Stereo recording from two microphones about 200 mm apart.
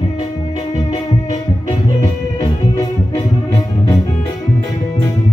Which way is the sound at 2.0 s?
15° left (ahead or behind).